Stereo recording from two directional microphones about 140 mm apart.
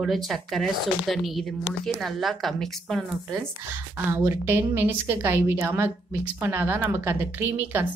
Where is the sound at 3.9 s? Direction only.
15° right (ahead or behind).